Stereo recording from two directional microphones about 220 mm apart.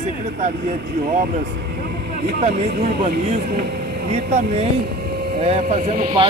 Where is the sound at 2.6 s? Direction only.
50° right (ahead or behind).